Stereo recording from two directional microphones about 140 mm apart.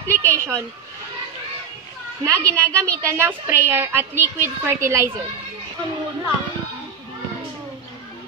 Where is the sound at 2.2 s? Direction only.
20° right (ahead or behind).